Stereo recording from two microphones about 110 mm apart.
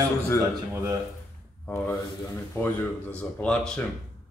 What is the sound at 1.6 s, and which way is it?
Speech, 20° left (ahead or behind).